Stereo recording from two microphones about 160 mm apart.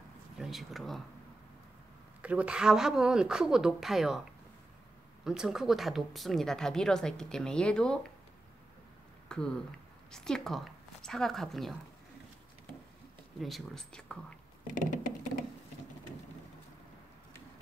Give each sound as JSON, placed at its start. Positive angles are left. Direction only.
{"t": 0.4, "sound": "speech", "side_deg": 0}
{"t": 2.2, "sound": "speech", "side_deg": -5}
{"t": 9.3, "sound": "speech", "side_deg": 5}
{"t": 13.4, "sound": "speech", "side_deg": 0}
{"t": 14.7, "sound": "patter", "side_deg": 55}